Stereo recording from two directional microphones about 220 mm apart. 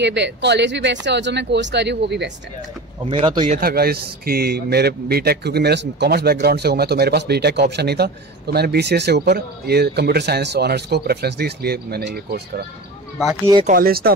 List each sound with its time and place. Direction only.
0.0 s a man's voice: 50° right (ahead or behind)
3.1 s speech: 20° right (ahead or behind)
3.5 s a man's voice: 45° right (ahead or behind)
13.7 s a man's voice: 40° right (ahead or behind)